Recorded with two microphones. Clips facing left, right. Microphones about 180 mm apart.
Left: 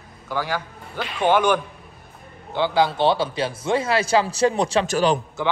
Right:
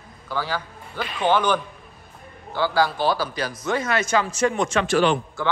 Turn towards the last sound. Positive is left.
turn(degrees=40)  # may be behind; listen again after turning